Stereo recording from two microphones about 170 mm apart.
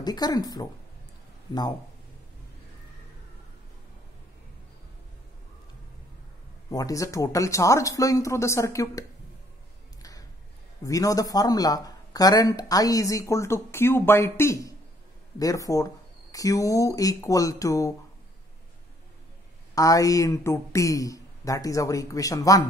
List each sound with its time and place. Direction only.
0.0 s speech: 25° left (ahead or behind)
6.7 s speech: 20° left (ahead or behind)
10.8 s speech: 20° left (ahead or behind)
19.7 s speech: 20° left (ahead or behind)